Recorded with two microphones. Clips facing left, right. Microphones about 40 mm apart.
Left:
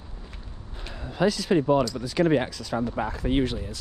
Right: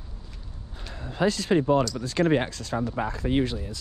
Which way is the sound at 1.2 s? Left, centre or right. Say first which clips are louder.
Left 1 dB; right.